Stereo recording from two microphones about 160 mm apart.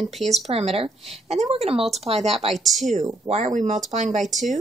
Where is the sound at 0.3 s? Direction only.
40° right (ahead or behind).